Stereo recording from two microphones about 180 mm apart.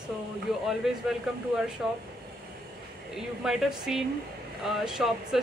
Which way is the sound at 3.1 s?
Centre (ahead or behind).